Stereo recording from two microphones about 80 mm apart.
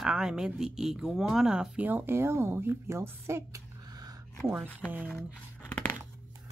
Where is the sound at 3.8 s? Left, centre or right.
Right.